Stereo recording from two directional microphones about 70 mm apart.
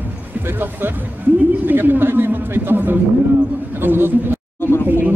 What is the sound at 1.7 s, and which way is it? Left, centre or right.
Speech, right.